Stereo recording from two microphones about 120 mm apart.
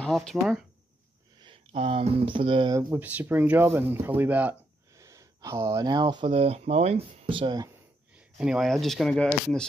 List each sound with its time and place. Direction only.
0.0 s speech: 5° left (ahead or behind)
1.4 s speech: 50° right (ahead or behind)
2.9 s speech: 15° right (ahead or behind)
4.9 s speech: 30° right (ahead or behind)
6.3 s speech: 60° right (ahead or behind)
8.1 s speech: 5° right (ahead or behind)